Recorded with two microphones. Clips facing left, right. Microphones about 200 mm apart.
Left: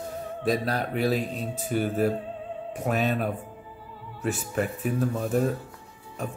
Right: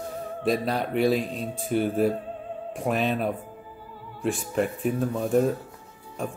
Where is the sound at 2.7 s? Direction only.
45° left (ahead or behind).